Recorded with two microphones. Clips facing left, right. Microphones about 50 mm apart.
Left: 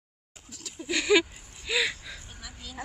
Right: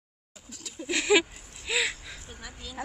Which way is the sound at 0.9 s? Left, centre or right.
Centre.